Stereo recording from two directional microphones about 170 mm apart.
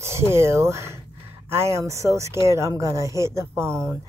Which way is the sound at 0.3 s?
15° right (ahead or behind).